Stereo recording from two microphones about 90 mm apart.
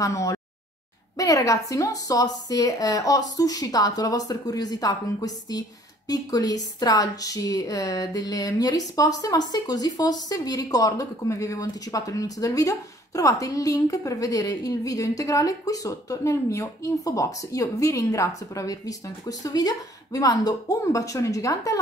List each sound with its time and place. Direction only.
0.0 s a woman's voice: 40° left (ahead or behind)